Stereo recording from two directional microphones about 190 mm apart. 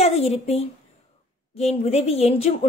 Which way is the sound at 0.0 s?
35° left (ahead or behind).